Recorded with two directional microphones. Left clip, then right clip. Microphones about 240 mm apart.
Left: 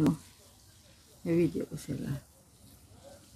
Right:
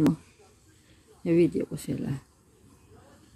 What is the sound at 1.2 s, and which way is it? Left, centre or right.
Speech, centre.